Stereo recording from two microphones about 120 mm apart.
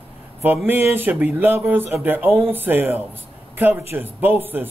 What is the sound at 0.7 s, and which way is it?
Speech, 15° right (ahead or behind).